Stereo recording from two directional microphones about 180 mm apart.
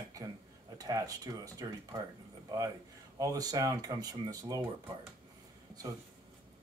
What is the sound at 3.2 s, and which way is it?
Speech, 20° right (ahead or behind).